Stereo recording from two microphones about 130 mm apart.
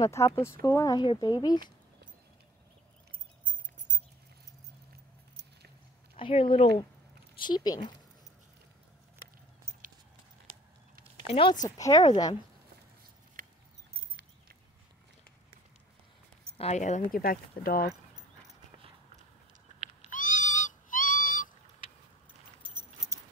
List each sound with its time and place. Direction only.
0.0 s speech: 20° left (ahead or behind)
3.1 s a sound: 85° right
6.1 s speech: 45° left (ahead or behind)
11.2 s speech: 45° left (ahead or behind)
11.6 s speech: 30° left (ahead or behind)
16.5 s speech: 60° left (ahead or behind); by 17.3 s 85° left
20.1 s cat: 90° left
22.6 s keys jangling: 40° right (ahead or behind)